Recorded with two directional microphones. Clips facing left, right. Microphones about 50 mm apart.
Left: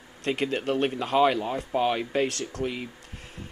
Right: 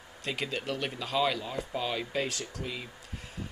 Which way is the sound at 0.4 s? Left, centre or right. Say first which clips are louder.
Left 8 dB; left.